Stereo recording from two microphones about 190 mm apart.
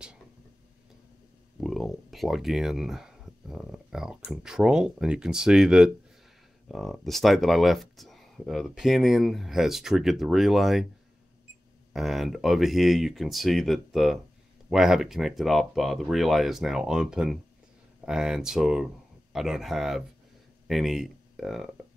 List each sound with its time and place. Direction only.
1.6 s a sound: centre (ahead or behind)
4.2 s speech: centre (ahead or behind)
11.9 s speech: centre (ahead or behind)